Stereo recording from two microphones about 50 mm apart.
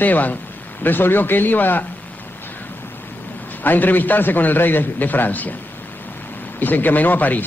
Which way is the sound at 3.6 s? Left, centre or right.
Left.